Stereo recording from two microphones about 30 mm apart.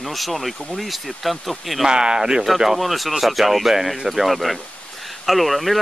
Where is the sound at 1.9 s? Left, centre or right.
Right.